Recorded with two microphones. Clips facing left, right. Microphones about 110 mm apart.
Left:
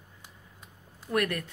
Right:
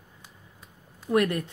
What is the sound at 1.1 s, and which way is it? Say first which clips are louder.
Speech: right 5 dB; 20° right (ahead or behind).